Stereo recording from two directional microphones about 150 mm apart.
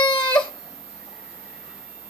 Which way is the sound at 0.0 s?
30° left (ahead or behind).